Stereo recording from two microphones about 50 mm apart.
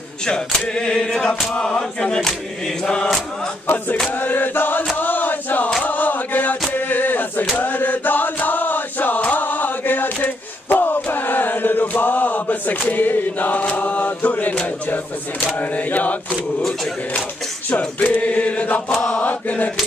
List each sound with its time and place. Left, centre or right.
0.2 s chant: centre
3.6 s mantra: left
4.9 s chant: left
6.7 s a sound: left
7.5 s chant: left
15.4 s mantra: left
17.6 s choir: left
18.9 s mantra: left